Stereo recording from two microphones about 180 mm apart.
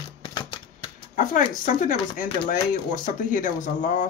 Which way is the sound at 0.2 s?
25° left (ahead or behind).